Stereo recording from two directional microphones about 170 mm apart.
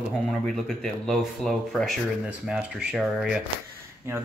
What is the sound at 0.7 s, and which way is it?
Speech, centre (ahead or behind).